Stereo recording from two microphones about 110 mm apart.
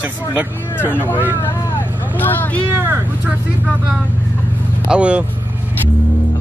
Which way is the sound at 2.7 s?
15° right (ahead or behind).